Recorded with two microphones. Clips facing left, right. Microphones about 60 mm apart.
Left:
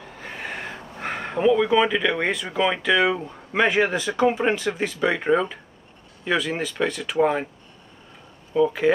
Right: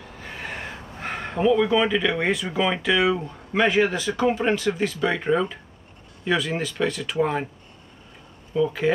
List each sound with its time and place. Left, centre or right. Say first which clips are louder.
0.4 s a sound: left 1 dB; centre
2.5 s speech: left 4 dB; centre
3.5 s speech: even; centre
5.3 s speech: left 1 dB; centre
8.5 s speech: left 3 dB; centre